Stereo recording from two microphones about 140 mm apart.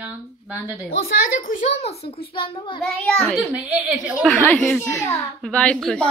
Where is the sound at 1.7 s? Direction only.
50° left (ahead or behind).